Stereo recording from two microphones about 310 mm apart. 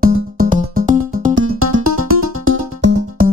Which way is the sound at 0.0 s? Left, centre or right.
Right.